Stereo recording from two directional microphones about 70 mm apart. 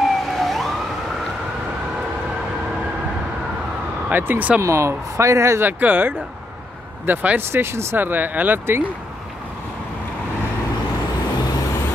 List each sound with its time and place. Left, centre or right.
0.0 s emergency vehicle: centre
4.1 s speech: right
4.6 s speech: right
5.6 s speech: right